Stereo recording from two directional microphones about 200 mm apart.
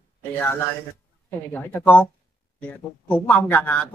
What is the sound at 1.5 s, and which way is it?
Speech, 10° left (ahead or behind).